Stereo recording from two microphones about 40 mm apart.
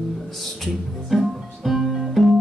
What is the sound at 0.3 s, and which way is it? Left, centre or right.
Speech, centre.